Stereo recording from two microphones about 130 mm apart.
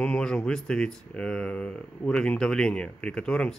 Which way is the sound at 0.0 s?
5° left (ahead or behind).